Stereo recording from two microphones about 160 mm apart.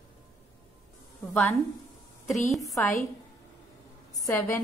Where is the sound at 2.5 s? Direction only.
Centre (ahead or behind).